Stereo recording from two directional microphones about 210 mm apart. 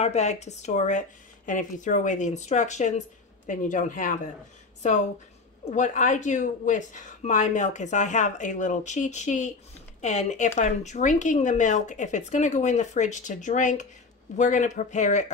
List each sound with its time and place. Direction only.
0.0 s speech: 30° left (ahead or behind)
5.7 s speech: 35° left (ahead or behind)